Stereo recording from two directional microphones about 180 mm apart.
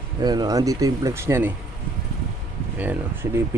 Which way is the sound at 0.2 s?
20° right (ahead or behind).